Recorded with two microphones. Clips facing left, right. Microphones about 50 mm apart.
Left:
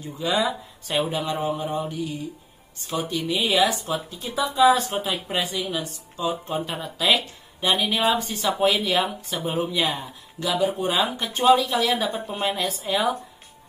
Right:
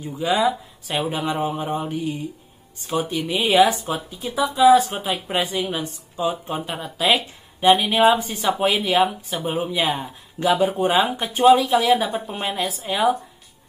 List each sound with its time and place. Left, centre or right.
0.0 s speech: centre
0.4 s a woman's voice: centre
1.1 s speech: right
2.9 s speech: centre
3.8 s speech: centre
4.2 s a woman's voice: centre
5.7 s speech: right
9.3 s a woman's voice: centre
9.7 s speech: centre
10.4 s speech: right
11.1 s speech: centre